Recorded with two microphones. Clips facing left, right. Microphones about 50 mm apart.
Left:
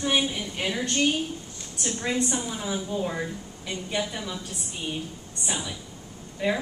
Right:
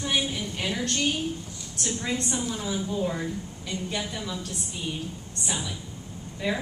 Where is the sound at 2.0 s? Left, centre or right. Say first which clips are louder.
Left 3 dB; centre.